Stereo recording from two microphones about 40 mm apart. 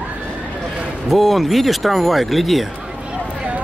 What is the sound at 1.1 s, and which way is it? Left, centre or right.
Speech, centre.